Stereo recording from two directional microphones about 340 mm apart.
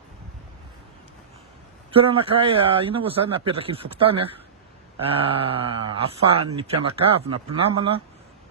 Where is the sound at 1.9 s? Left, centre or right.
Centre.